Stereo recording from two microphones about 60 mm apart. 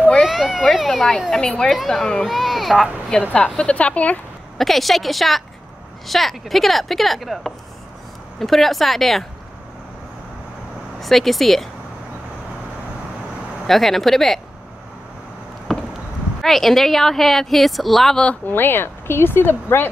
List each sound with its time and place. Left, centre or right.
0.2 s a woman's voice: centre
1.4 s a woman's voice: centre
1.7 s a woman's voice: centre
3.1 s a woman's voice: centre
4.6 s a woman's voice: centre
11.0 s a woman's voice: centre
13.7 s a woman's voice: centre
15.7 s a sound: centre
16.3 s a woman's voice: centre
18.1 s a woman's voice: centre
18.4 s speech: left